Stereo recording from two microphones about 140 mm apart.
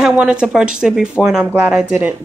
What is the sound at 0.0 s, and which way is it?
Speech, 5° right (ahead or behind).